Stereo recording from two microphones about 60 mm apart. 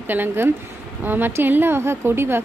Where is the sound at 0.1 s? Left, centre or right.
Right.